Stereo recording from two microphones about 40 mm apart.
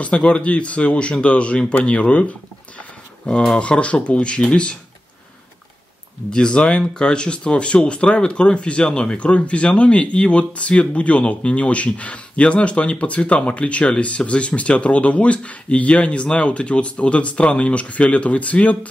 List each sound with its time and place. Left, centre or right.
0.0 s speech: left
3.5 s speech: left
6.3 s speech: left
6.8 s speech: centre; by 18.9 s left